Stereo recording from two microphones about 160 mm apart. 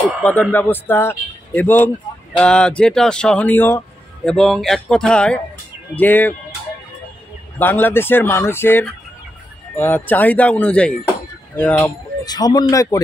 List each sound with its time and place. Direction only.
0.2 s a man's voice: 10° left (ahead or behind)
7.5 s speech: 10° left (ahead or behind)
12.3 s speech: 25° left (ahead or behind)